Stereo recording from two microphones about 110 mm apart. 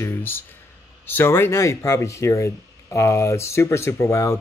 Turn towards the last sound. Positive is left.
turn(degrees=25)  # may be behind; listen again after turning